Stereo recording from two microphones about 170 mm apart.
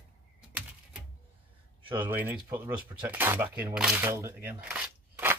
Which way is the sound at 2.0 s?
10° right (ahead or behind).